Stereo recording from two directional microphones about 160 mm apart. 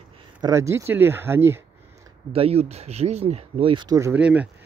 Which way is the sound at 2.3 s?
40° right (ahead or behind).